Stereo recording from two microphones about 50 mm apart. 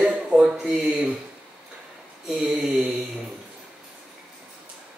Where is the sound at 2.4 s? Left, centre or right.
Centre.